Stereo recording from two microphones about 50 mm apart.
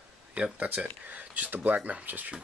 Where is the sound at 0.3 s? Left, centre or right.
Right.